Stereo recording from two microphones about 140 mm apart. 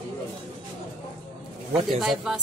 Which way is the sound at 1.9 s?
5° right (ahead or behind).